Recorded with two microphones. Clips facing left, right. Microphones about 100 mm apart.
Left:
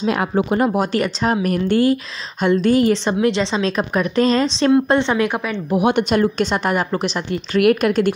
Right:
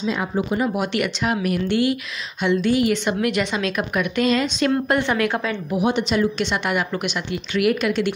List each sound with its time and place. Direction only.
0.0 s speech: 60° left (ahead or behind)
0.7 s a woman's voice: 35° left (ahead or behind); by 5.6 s 20° left (ahead or behind)
5.8 s a woman's voice: 60° left (ahead or behind)